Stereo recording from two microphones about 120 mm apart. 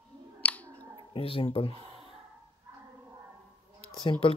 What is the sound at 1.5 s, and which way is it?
Speech, 45° left (ahead or behind).